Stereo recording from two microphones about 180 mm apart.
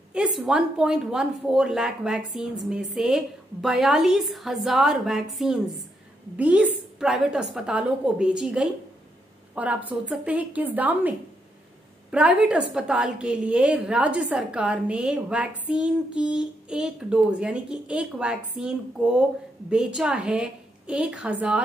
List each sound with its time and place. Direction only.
0.1 s a woman's voice: 5° right (ahead or behind)